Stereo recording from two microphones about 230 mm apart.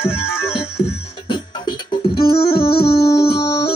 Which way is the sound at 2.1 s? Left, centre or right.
Left.